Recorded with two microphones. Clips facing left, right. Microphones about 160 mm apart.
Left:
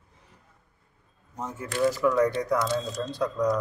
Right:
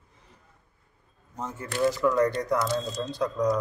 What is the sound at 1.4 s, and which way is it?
Speech, 5° left (ahead or behind).